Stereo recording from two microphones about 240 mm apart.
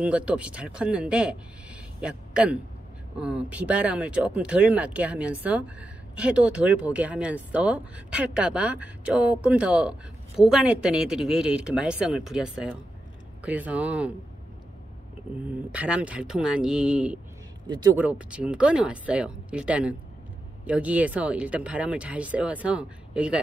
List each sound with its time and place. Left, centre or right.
0.0 s speech: centre
15.3 s speech: centre